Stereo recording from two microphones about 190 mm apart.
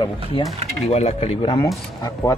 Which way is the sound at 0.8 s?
35° left (ahead or behind).